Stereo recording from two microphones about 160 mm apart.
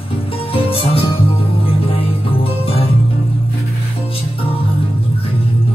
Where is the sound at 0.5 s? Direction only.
35° left (ahead or behind).